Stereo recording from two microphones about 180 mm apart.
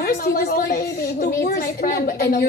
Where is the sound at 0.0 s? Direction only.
55° left (ahead or behind).